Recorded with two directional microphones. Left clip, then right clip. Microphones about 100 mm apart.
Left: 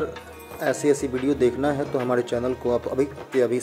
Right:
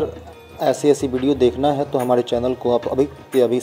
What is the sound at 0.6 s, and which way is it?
Speech, 20° right (ahead or behind).